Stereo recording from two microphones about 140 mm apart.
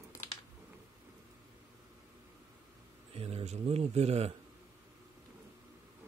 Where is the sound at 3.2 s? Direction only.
45° right (ahead or behind).